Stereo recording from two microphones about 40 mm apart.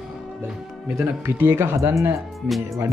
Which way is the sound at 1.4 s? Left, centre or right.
Right.